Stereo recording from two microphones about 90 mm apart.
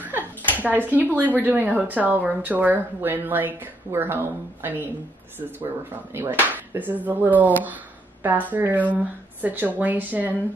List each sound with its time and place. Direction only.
0.6 s speech: 20° right (ahead or behind)
6.1 s speech: 25° right (ahead or behind)